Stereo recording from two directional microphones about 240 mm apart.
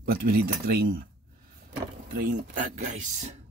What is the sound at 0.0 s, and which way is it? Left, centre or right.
Speech, right.